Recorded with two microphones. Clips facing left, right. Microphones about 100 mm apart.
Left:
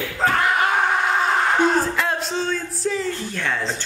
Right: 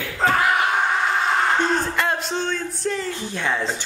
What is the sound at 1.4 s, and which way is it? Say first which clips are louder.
Music: left 2 dB; centre (ahead or behind).